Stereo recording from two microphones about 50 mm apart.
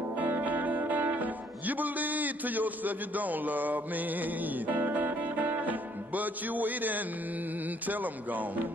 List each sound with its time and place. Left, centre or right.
0.2 s music: right
7.8 s speech: right